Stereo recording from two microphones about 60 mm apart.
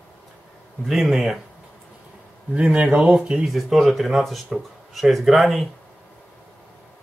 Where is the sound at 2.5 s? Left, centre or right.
Right.